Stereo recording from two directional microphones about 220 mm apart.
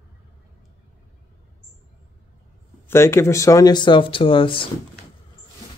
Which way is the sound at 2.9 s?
10° left (ahead or behind).